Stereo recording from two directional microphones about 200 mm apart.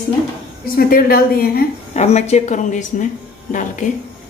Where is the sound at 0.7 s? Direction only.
45° left (ahead or behind).